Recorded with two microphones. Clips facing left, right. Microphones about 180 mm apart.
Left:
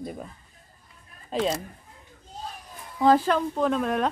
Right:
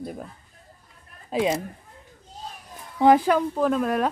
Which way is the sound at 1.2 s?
10° right (ahead or behind).